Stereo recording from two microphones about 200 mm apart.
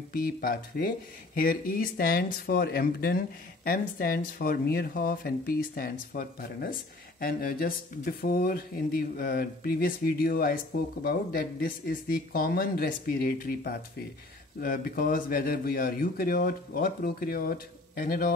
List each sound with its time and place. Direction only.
0.1 s speech: 45° left (ahead or behind)